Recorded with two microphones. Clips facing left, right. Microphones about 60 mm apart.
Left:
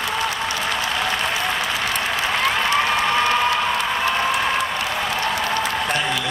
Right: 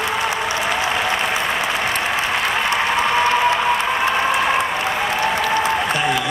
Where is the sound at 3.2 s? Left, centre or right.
Right.